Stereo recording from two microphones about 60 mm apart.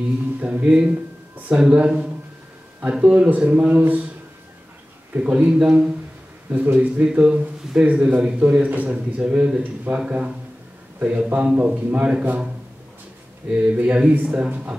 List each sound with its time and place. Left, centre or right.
0.4 s a man's voice: centre
5.1 s a man's voice: right
5.5 s speech: centre
6.5 s a man's voice: right
13.5 s a man's voice: centre